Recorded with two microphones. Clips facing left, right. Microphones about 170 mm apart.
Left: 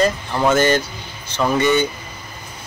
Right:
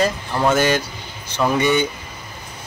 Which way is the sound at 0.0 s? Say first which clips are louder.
Left 1 dB; 5° right (ahead or behind).